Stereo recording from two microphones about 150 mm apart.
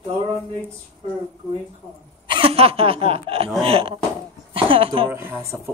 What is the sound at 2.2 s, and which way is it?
Speech, 35° right (ahead or behind).